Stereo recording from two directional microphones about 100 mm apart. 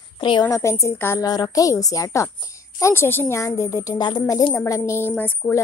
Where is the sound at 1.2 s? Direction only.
40° left (ahead or behind).